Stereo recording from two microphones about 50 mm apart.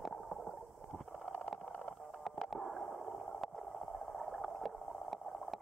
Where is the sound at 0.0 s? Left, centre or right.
Centre.